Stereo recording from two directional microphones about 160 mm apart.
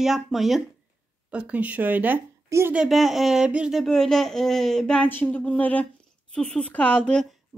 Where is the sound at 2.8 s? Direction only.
Centre (ahead or behind).